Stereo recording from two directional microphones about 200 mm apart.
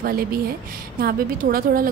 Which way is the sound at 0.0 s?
50° right (ahead or behind).